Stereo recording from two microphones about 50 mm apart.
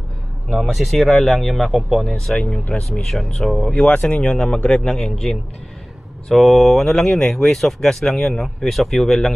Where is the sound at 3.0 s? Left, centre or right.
Centre.